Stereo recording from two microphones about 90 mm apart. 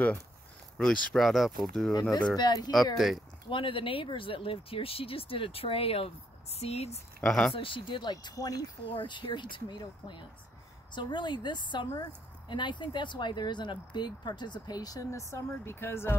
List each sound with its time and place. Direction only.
0.7 s speech: 5° left (ahead or behind)
2.0 s speech: 50° left (ahead or behind)
3.0 s speech: centre (ahead or behind)
3.4 s speech: 75° left (ahead or behind); by 6.8 s 90° left
7.2 s speech: 10° left (ahead or behind)
7.5 s speech: 75° left (ahead or behind); by 8.6 s 45° left (ahead or behind)
8.8 s speech: 65° left (ahead or behind); by 16.2 s 25° left (ahead or behind)